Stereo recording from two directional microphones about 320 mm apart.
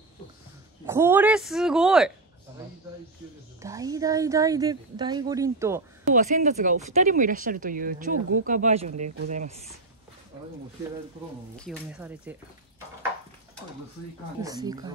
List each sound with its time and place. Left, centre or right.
0.8 s a woman's voice: centre
3.6 s speech: centre
6.1 s speech: right
11.5 s a woman's voice: centre
14.4 s speech: centre